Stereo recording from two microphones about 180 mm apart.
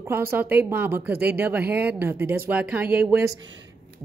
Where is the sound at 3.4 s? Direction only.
90° right.